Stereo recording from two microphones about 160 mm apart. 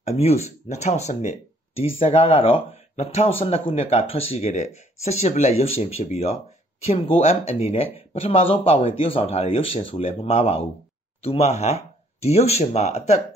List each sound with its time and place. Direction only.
0.0 s speech: 40° left (ahead or behind)